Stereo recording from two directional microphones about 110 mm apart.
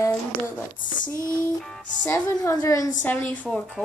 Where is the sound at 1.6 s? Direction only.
5° left (ahead or behind).